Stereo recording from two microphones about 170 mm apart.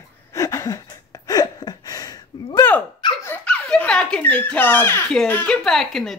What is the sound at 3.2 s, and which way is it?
A child's voice, 10° left (ahead or behind).